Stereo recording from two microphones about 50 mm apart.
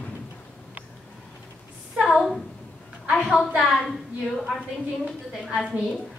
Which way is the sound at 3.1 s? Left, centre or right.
Centre.